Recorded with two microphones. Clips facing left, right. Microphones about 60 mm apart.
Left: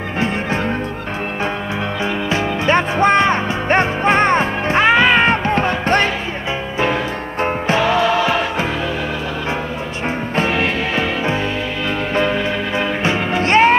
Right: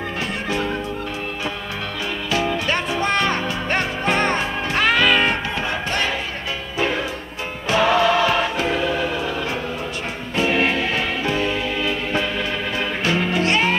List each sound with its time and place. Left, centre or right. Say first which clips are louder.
2.2 s music: left 2 dB; left
7.4 s music: left 4 dB; left
11.0 s music: left 3 dB; left
12.7 s music: left 2 dB; left